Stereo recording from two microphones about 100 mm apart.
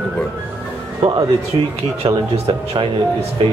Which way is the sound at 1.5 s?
75° right (ahead or behind).